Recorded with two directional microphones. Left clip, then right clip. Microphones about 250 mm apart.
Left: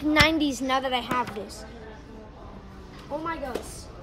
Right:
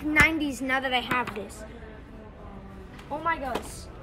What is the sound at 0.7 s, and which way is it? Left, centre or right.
Speech, left.